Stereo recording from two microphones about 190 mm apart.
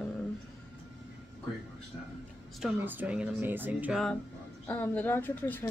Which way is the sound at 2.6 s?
10° right (ahead or behind).